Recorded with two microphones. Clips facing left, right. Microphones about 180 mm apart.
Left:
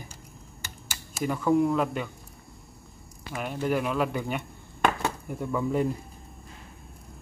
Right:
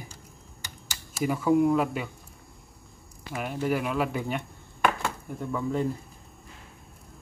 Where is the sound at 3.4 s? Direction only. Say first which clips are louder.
Even; centre (ahead or behind).